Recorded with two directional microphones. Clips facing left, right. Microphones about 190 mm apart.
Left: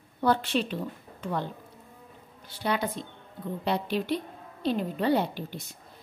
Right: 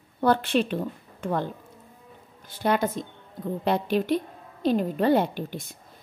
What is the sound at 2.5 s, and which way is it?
A woman's voice, 50° right (ahead or behind).